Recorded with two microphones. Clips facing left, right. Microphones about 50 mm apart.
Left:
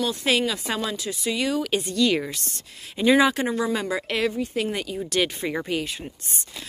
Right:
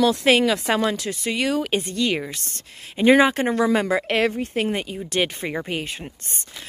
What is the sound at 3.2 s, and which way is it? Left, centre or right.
Speech, right.